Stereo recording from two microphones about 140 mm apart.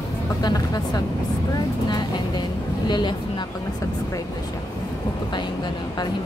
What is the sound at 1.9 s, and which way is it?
Vehicle, 30° left (ahead or behind).